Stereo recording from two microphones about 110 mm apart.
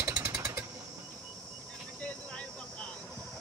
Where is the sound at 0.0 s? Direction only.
20° right (ahead or behind).